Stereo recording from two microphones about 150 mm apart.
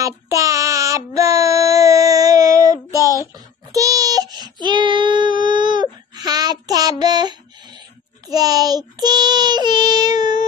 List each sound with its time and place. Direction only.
0.0 s child singing: 20° right (ahead or behind)
2.9 s child singing: 20° left (ahead or behind)
3.3 s child singing: 25° right (ahead or behind)